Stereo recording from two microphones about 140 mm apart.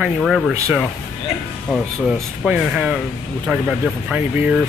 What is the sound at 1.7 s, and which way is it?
Speech, centre (ahead or behind).